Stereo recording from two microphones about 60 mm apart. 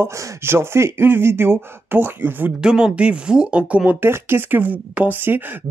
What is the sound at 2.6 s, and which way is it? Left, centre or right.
Speech, centre.